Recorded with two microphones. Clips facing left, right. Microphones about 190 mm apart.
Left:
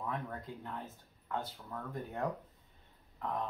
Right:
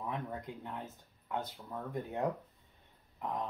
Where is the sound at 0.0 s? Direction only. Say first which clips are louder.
Right 1 dB; 20° right (ahead or behind).